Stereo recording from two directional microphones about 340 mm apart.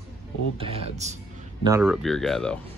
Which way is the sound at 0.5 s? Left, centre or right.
Centre.